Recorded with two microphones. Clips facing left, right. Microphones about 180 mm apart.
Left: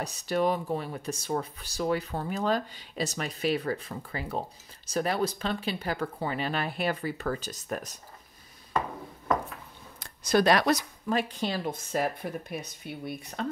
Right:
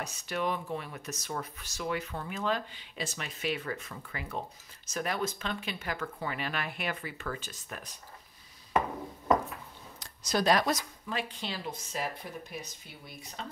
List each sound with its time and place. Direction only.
0.0 s speech: 35° left (ahead or behind)
9.9 s speech: 55° left (ahead or behind)
11.1 s speech: 45° left (ahead or behind); by 13.5 s 60° left (ahead or behind)